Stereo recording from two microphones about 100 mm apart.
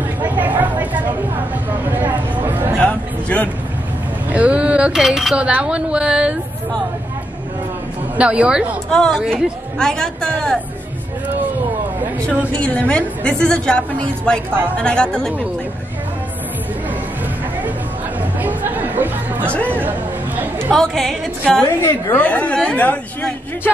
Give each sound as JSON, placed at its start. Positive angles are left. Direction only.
{"t": 0.2, "sound": "vehicle", "side_deg": -15}
{"t": 1.9, "sound": "a sound", "side_deg": -20}
{"t": 2.8, "sound": "music", "side_deg": 15}
{"t": 4.3, "sound": "speech", "side_deg": -15}
{"t": 8.2, "sound": "speech", "side_deg": -10}
{"t": 8.9, "sound": "a woman's voice", "side_deg": 5}
{"t": 12.4, "sound": "a woman's voice", "side_deg": 15}
{"t": 18.4, "sound": "chatter", "side_deg": -15}
{"t": 20.7, "sound": "a woman's voice", "side_deg": 5}
{"t": 21.8, "sound": "a woman's voice", "side_deg": 15}